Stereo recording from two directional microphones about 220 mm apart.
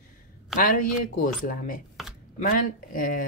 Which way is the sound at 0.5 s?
40° left (ahead or behind).